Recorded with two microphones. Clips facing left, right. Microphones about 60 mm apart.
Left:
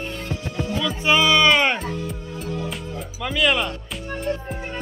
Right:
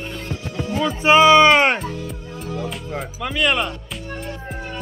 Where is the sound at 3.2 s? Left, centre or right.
Centre.